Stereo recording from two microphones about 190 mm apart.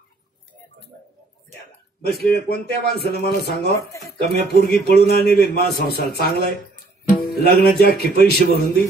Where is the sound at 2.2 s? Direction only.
55° left (ahead or behind).